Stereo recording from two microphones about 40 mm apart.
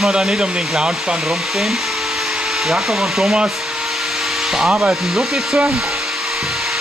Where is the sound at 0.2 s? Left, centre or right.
Centre.